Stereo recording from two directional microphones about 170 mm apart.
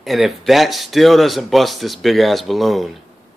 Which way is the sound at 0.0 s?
Centre (ahead or behind).